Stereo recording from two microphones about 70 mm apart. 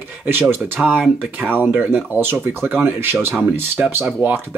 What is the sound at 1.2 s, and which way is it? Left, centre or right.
Speech, right.